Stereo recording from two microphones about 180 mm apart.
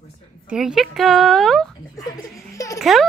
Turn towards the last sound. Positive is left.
turn(degrees=0)  # may be behind; listen again after turning